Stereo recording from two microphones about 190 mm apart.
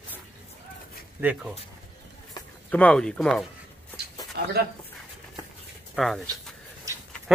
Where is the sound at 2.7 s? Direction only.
5° left (ahead or behind).